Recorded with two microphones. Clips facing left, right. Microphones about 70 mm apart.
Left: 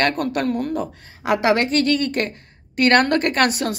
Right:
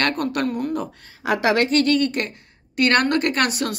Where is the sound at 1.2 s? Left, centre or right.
Left.